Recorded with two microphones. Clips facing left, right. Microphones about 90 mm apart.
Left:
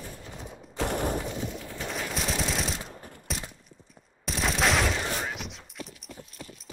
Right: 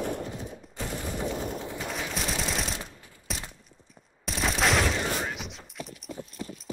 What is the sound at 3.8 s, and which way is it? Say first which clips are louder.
Fusillade: left 1 dB; centre (ahead or behind).